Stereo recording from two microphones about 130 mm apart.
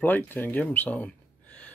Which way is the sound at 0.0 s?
15° left (ahead or behind).